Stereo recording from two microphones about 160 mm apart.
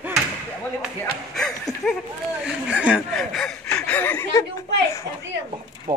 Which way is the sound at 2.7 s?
5° right (ahead or behind).